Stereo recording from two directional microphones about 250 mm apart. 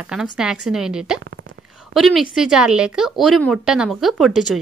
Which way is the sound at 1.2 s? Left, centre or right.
Right.